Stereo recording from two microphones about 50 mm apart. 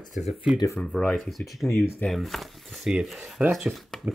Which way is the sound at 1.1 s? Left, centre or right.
Centre.